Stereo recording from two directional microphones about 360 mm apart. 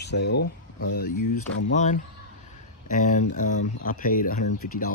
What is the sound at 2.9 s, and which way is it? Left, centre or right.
Speech, left.